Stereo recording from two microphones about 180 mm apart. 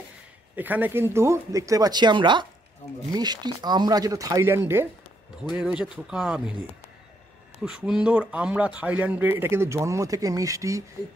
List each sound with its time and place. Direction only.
0.6 s a man's voice: 10° right (ahead or behind)
7.6 s a man's voice: 5° right (ahead or behind)